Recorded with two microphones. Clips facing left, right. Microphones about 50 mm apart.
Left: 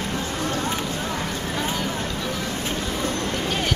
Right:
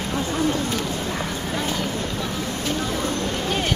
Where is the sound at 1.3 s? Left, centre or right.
Centre.